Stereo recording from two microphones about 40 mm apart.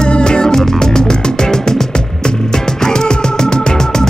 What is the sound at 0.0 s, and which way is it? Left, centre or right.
Music, left.